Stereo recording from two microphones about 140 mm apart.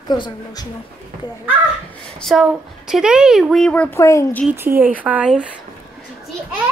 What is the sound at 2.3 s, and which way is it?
Child singing, centre (ahead or behind).